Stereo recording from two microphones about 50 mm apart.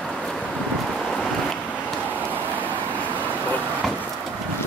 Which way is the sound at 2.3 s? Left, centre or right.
Right.